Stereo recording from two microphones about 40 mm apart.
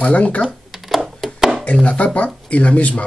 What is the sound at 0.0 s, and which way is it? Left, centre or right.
Speech, left.